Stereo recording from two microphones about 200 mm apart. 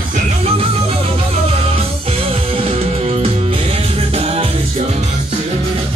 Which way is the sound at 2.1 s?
30° right (ahead or behind).